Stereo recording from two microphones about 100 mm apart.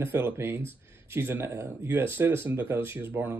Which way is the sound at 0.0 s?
25° right (ahead or behind).